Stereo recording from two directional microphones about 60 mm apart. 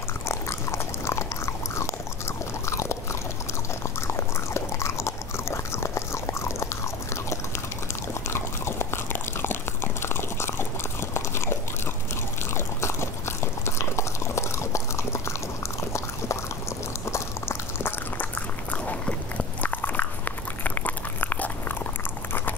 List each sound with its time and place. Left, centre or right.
0.3 s biting: left
2.6 s chewing: left
7.9 s biting: left
12.5 s biting: left
15.9 s liquid: left
18.7 s biting: left